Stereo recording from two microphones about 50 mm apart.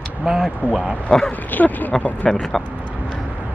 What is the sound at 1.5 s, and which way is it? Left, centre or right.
Speech, left.